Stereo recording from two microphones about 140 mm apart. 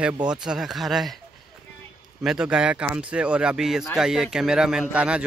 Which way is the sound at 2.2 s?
5° right (ahead or behind).